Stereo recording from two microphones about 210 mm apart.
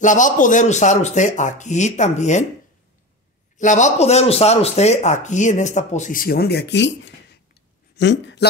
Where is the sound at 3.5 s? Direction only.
35° left (ahead or behind); by 8.5 s 55° left (ahead or behind).